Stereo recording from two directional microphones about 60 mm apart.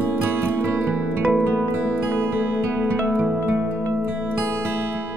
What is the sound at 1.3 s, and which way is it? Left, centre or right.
Music, right.